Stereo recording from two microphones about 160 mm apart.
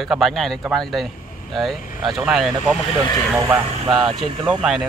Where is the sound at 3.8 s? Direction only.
30° right (ahead or behind).